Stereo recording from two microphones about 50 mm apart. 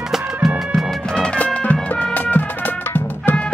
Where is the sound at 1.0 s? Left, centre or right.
Centre.